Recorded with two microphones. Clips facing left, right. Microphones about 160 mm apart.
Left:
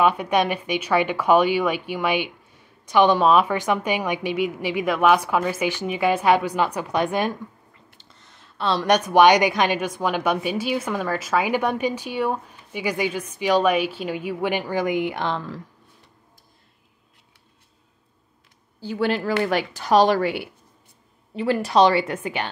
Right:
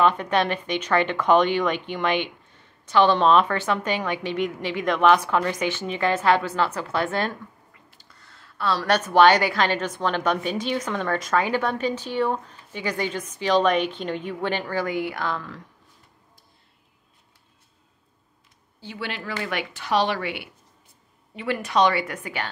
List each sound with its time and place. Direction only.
0.0 s speech: 10° left (ahead or behind); by 15.6 s 30° left (ahead or behind)
18.8 s a woman's voice: 40° left (ahead or behind); by 22.5 s 20° left (ahead or behind)